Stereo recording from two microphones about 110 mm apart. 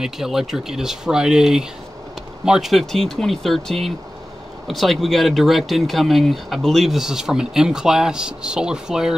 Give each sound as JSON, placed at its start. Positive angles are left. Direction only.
{"t": 0.0, "sound": "speech", "side_deg": -5}